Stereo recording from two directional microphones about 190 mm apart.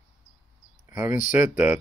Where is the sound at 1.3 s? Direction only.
10° right (ahead or behind).